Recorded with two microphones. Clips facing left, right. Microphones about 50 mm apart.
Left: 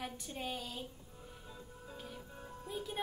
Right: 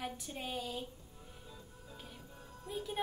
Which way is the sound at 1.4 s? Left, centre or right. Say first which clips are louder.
Left 4 dB; centre.